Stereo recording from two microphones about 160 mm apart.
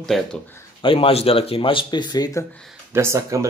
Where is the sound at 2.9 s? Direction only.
15° right (ahead or behind).